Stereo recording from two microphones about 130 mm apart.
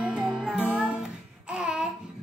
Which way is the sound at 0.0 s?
5° right (ahead or behind).